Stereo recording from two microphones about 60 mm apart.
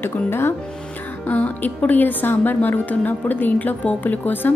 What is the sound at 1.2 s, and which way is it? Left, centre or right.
Speech, left.